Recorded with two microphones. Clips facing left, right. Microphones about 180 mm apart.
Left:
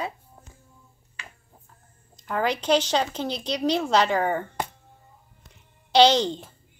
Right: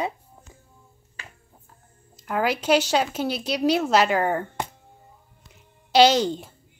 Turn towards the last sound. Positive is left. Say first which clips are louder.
# right 1 dB
turn(degrees=-10)  # may be behind; listen again after turning